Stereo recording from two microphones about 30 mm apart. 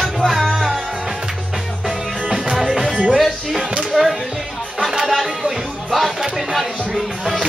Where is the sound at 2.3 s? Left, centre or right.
Centre.